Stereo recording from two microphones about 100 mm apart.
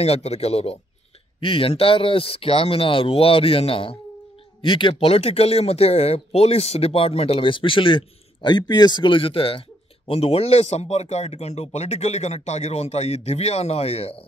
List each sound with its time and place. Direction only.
0.0 s speech: 90° left
1.4 s a man's voice: 65° left (ahead or behind)
4.6 s speech: 55° left (ahead or behind)
4.9 s speech: 90° left